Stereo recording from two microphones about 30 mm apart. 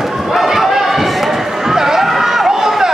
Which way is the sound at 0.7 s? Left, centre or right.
Centre.